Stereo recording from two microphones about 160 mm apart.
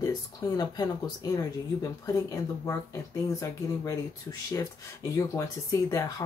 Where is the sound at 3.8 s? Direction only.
20° left (ahead or behind).